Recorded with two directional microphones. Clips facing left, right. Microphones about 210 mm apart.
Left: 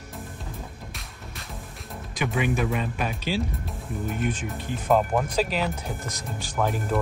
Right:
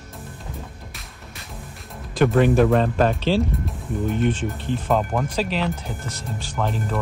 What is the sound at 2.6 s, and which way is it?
Speech, 90° right.